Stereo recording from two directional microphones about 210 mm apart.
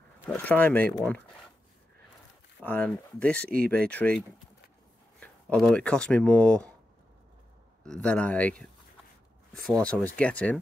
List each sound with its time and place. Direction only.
0.3 s speech: 10° left (ahead or behind)
2.6 s speech: 5° left (ahead or behind)
3.4 s speech: 45° right (ahead or behind)
3.9 s speech: 5° left (ahead or behind)
5.2 s speech: 5° left (ahead or behind)
7.8 s speech: 5° left (ahead or behind)